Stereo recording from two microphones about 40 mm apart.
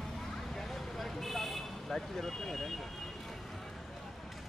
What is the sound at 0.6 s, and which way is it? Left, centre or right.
Vehicle, centre.